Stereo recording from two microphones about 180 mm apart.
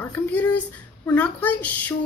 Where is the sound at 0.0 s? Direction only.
10° left (ahead or behind).